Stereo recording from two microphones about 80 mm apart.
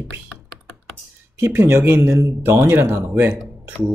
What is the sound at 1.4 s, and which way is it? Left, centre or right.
A man's voice, right.